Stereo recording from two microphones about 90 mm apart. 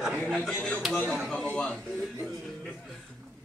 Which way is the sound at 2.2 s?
Centre (ahead or behind).